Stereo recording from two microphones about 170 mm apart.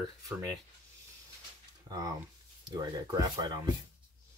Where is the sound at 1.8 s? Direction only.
20° right (ahead or behind).